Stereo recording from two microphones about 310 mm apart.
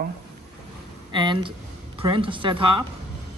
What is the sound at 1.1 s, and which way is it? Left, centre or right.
Speech, centre.